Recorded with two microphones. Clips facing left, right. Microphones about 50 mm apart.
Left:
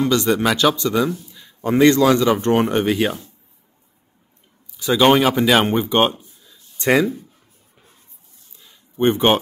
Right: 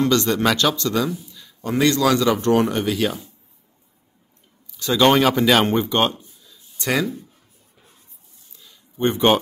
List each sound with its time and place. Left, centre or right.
0.0 s speech: centre; by 3.1 s left
4.7 s speech: centre
8.5 s a sound: left